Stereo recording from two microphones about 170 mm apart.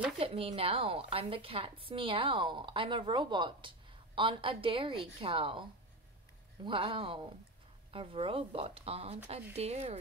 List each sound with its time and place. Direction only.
0.2 s a woman's voice: 35° right (ahead or behind)